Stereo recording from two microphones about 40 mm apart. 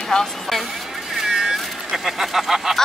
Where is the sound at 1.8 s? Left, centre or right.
Centre.